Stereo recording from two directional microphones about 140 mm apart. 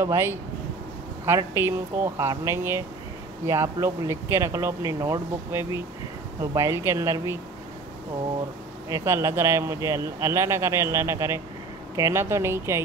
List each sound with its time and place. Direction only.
0.0 s speech: 20° right (ahead or behind)
8.8 s speech: 20° right (ahead or behind)